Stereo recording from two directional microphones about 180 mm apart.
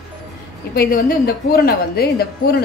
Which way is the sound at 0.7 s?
55° left (ahead or behind).